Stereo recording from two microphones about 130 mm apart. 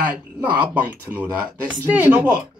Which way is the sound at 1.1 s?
10° right (ahead or behind).